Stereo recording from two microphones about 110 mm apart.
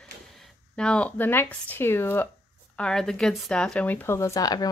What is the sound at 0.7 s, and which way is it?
Speech, 10° left (ahead or behind).